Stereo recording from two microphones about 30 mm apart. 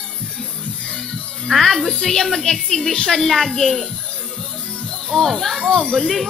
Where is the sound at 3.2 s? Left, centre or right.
Centre.